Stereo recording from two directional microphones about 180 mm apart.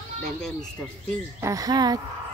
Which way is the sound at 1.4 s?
20° right (ahead or behind).